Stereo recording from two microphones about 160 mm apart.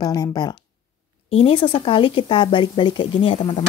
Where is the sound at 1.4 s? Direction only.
35° left (ahead or behind).